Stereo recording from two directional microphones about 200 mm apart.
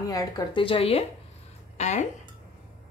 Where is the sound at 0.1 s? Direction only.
20° left (ahead or behind).